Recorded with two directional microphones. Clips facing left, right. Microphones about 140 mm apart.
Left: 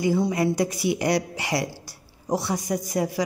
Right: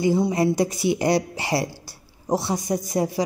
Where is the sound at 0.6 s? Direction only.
25° right (ahead or behind).